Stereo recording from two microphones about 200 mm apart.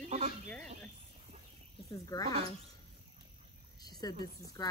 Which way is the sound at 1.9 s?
15° left (ahead or behind).